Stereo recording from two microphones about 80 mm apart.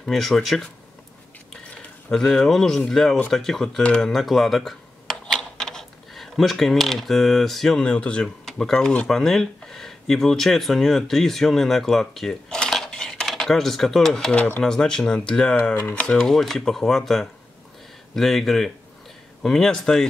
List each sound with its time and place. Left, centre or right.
0.0 s speech: centre
2.3 s speech: centre